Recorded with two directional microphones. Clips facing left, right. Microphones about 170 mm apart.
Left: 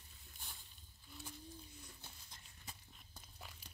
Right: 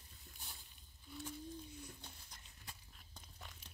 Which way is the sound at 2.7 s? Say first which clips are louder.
Left 1 dB; centre (ahead or behind).